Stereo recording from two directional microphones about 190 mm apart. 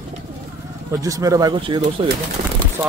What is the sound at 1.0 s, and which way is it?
Speech, 20° right (ahead or behind).